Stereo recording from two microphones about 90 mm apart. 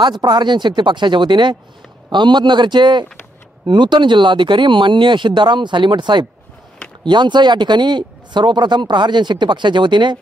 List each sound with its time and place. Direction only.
0.0 s speech: 55° right (ahead or behind)